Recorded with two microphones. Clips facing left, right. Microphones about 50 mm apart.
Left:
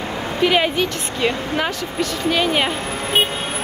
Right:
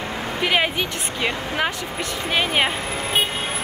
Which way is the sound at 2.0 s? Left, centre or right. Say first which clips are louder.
Left 4 dB; right.